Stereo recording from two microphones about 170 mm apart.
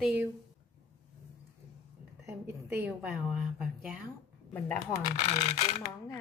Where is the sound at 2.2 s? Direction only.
15° right (ahead or behind).